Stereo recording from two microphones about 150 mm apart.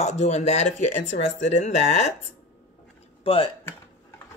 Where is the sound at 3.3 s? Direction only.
35° left (ahead or behind).